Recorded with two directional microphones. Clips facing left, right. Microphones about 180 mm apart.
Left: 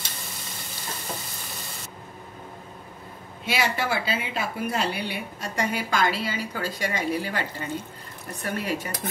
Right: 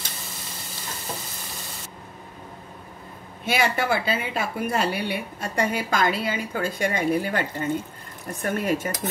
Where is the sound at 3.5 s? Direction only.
50° right (ahead or behind).